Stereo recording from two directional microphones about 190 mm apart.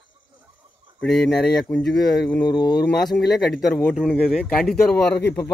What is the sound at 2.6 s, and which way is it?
Speech, 55° left (ahead or behind).